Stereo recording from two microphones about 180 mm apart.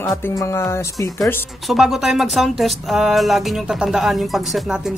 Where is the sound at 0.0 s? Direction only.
15° left (ahead or behind).